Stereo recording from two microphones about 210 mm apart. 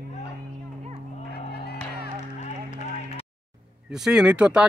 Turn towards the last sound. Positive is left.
turn(degrees=-5)  # may be behind; listen again after turning